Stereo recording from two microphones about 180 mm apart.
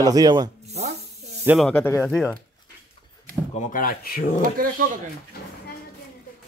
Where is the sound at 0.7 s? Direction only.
35° right (ahead or behind).